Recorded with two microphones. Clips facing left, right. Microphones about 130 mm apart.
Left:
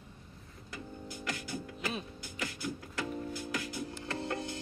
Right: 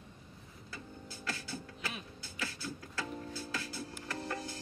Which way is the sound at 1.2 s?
15° left (ahead or behind).